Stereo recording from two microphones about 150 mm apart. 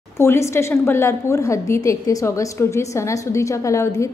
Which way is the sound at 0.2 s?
15° left (ahead or behind).